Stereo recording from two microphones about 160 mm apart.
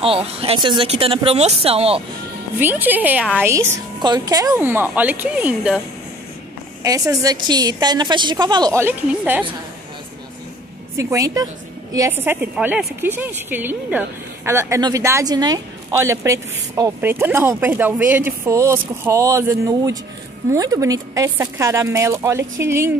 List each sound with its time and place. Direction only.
0.0 s speech: 35° right (ahead or behind)
2.6 s a woman's voice: 10° right (ahead or behind)
6.8 s a woman's voice: 20° right (ahead or behind)
8.7 s a woman's voice: 10° right (ahead or behind)
11.0 s a woman's voice: 20° right (ahead or behind)